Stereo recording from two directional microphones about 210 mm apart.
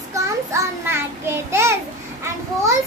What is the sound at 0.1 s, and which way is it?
Child singing, 10° right (ahead or behind).